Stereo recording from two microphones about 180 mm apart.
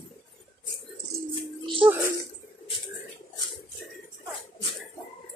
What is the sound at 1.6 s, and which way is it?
Music, 30° right (ahead or behind).